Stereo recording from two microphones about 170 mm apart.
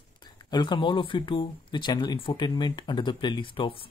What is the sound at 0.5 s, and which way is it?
Speech, 25° left (ahead or behind).